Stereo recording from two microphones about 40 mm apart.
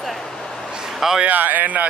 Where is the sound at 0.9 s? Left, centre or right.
Centre.